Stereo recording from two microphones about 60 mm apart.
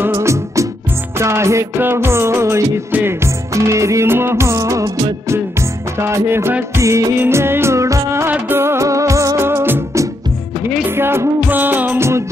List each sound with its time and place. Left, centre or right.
0.1 s music: right
1.8 s music: right
2.9 s music: right
3.5 s music: right
4.1 s music: right
5.9 s music: right
6.8 s music: right
7.2 s music: right
8.3 s music of bollywood: right
9.4 s music: right